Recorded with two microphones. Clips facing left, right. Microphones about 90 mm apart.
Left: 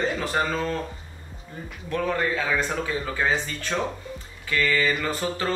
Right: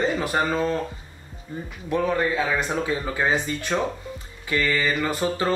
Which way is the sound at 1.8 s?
15° right (ahead or behind).